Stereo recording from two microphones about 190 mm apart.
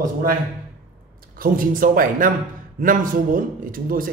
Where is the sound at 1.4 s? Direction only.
45° right (ahead or behind).